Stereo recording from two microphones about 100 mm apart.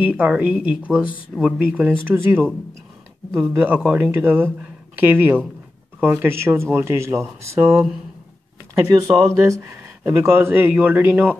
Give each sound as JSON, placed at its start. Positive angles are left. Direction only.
{"t": 0.0, "sound": "speech", "side_deg": -15}
{"t": 3.5, "sound": "speech", "side_deg": -15}
{"t": 7.7, "sound": "speech", "side_deg": -5}
{"t": 9.0, "sound": "speech", "side_deg": -35}
{"t": 9.6, "sound": "speech", "side_deg": -25}